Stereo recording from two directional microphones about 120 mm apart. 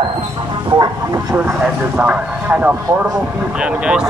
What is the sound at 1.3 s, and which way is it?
A man's voice, 15° right (ahead or behind).